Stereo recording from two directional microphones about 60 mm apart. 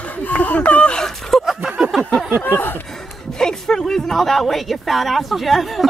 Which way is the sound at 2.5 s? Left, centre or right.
Left.